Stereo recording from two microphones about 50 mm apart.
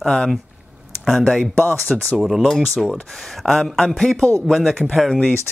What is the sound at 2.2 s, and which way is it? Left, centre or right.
Speech, centre.